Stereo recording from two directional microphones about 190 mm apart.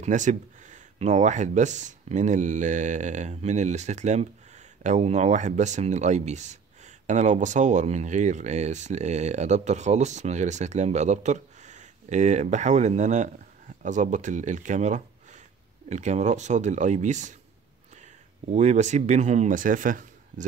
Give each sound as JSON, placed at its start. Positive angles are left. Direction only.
{"t": 0.0, "sound": "speech", "side_deg": -40}
{"t": 18.5, "sound": "speech", "side_deg": -40}